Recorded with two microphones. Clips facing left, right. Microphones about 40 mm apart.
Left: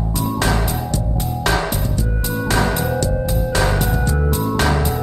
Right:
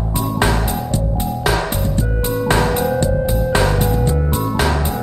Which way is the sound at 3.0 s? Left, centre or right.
Right.